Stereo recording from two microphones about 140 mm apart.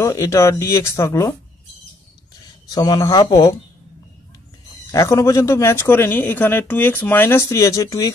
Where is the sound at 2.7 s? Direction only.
30° left (ahead or behind).